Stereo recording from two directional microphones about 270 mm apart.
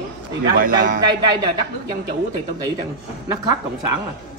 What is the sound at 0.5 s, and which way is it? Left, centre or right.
Speech, right.